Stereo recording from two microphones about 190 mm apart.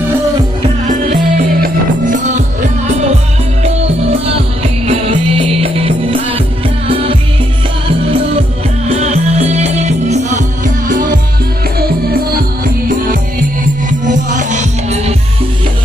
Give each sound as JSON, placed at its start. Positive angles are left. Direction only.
{"t": 0.6, "sound": "music", "side_deg": -40}
{"t": 8.8, "sound": "music", "side_deg": -35}